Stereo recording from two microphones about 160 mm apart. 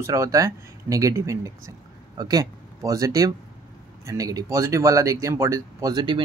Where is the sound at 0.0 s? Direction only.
20° right (ahead or behind).